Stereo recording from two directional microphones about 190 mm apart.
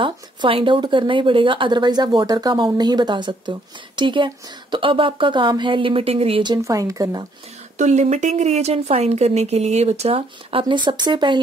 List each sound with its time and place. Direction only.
0.0 s speech: 25° right (ahead or behind)
7.7 s speech: 35° right (ahead or behind)